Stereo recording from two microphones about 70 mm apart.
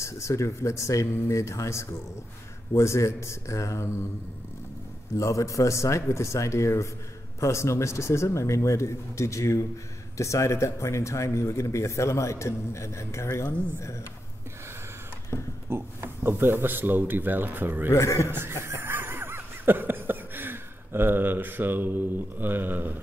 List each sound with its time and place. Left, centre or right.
0.0 s speech: left
5.1 s speech: left
15.3 s speech: left
15.7 s speech: right
17.9 s speech: left
18.3 s a sound: right